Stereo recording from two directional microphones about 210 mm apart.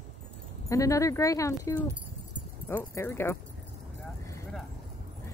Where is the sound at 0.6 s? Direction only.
15° left (ahead or behind).